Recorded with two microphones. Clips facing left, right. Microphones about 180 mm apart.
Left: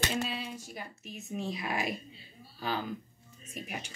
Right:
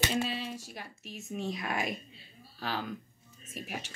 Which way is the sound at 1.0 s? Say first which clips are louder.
Right 1 dB; centre (ahead or behind).